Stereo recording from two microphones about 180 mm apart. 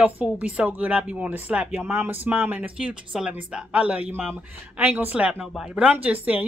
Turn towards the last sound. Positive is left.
turn(degrees=-10)  # may be behind; listen again after turning